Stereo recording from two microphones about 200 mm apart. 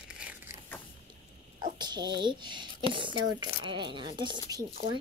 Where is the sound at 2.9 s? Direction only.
25° right (ahead or behind).